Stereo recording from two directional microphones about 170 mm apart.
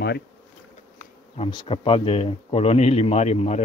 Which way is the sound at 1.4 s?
30° left (ahead or behind).